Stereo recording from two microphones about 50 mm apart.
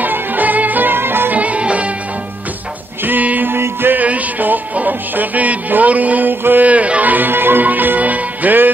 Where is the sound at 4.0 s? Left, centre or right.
Right.